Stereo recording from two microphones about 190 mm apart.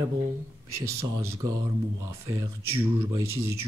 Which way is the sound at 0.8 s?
15° right (ahead or behind).